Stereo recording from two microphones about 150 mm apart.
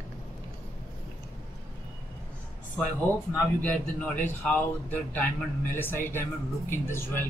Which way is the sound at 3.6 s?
10° left (ahead or behind).